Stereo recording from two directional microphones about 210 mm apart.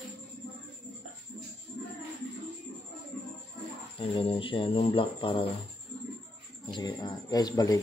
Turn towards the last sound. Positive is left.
turn(degrees=15)  # may be behind; listen again after turning